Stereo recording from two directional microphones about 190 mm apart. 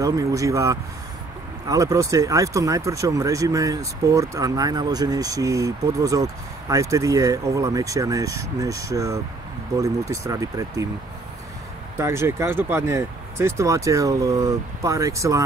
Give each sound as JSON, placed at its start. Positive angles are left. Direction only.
{"t": 0.0, "sound": "speech", "side_deg": -15}
{"t": 12.0, "sound": "speech", "side_deg": -15}